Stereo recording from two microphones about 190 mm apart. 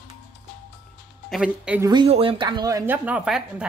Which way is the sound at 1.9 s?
25° right (ahead or behind).